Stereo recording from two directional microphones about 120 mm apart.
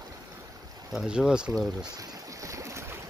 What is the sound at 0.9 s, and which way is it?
Speech, 5° right (ahead or behind).